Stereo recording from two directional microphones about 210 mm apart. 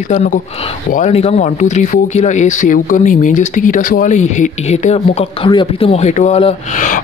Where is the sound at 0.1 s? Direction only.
35° left (ahead or behind).